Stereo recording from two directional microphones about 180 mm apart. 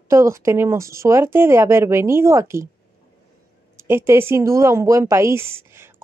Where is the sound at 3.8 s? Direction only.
15° right (ahead or behind).